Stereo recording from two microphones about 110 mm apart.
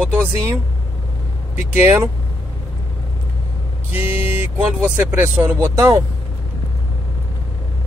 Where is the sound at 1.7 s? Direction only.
20° right (ahead or behind).